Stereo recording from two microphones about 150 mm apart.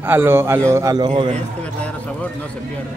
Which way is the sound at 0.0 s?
15° right (ahead or behind).